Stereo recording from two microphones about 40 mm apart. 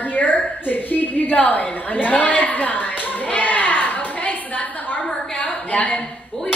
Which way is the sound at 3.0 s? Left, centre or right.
Left.